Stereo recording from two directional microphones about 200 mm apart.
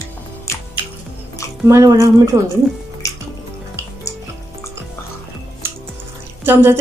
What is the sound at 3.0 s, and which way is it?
Music, 15° left (ahead or behind).